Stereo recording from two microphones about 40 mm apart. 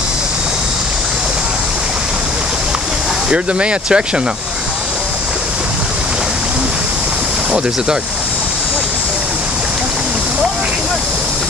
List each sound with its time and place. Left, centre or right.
3.3 s speech: right